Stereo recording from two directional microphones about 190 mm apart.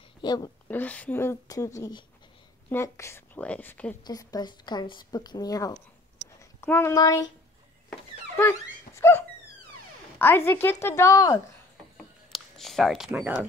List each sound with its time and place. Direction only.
0.2 s speech: 20° left (ahead or behind)
0.7 s a woman's voice: 10° left (ahead or behind)
4.0 s a woman's voice: 20° left (ahead or behind)
8.4 s dog: 10° left (ahead or behind)
10.1 s a woman's voice: 10° left (ahead or behind)
12.3 s a sound: centre (ahead or behind)